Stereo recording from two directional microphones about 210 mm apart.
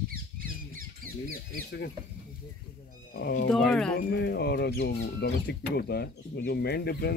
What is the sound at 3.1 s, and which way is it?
Speech, 45° left (ahead or behind).